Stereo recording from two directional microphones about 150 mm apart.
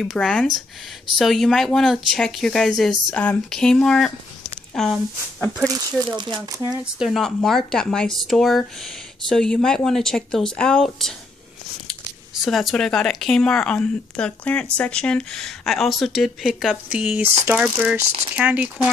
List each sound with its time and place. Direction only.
0.0 s speech: centre (ahead or behind)
5.7 s speech: 30° right (ahead or behind)
7.0 s speech: centre (ahead or behind)
12.4 s speech: centre (ahead or behind)